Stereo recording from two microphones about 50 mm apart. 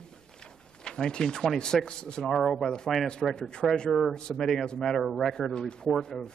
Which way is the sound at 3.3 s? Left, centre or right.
Centre.